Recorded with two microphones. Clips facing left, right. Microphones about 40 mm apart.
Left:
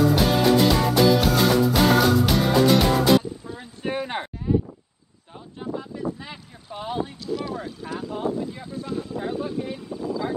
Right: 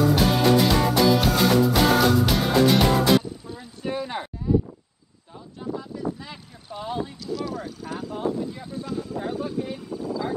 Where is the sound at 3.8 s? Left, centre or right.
Left.